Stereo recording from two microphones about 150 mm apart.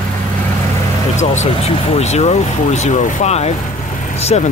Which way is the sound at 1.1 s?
45° left (ahead or behind).